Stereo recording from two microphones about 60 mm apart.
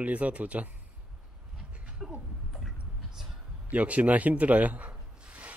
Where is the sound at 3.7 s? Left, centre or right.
Right.